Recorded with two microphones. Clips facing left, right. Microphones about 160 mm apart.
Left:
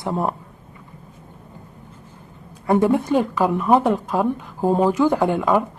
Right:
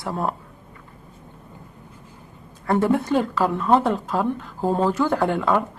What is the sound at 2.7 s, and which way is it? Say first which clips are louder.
A woman's voice: left 2 dB; 15° left (ahead or behind).